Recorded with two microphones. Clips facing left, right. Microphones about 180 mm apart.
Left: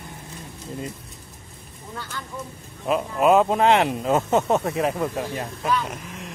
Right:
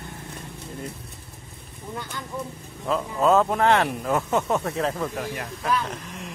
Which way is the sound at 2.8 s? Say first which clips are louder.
Left 2 dB; 15° left (ahead or behind).